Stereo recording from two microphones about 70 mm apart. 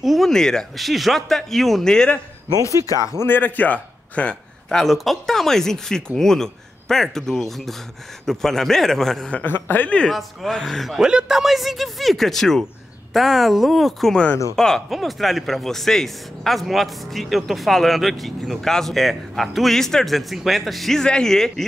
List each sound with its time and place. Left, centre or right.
0.0 s speech: centre
0.3 s speech: centre
3.3 s a man's voice: left; by 9.3 s centre
9.3 s speech: left
9.8 s speech: centre
10.1 s speech: centre